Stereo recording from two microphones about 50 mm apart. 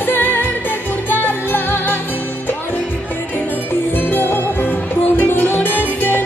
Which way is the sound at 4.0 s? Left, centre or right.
Left.